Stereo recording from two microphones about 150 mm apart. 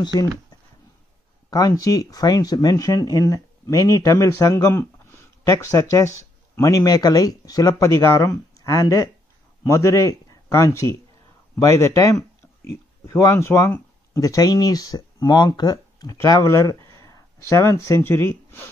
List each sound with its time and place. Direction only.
0.0 s speech: 25° left (ahead or behind)
1.5 s a man's voice: 25° left (ahead or behind)